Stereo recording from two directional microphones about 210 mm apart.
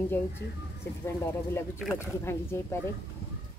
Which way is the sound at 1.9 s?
10° left (ahead or behind).